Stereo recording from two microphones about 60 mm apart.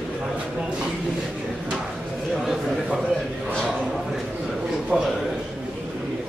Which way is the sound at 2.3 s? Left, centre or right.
Centre.